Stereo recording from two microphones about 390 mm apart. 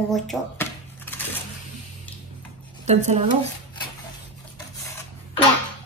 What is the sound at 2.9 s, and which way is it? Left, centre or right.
Speech, centre.